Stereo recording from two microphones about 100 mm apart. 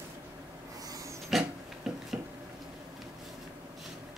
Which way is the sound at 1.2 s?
5° right (ahead or behind).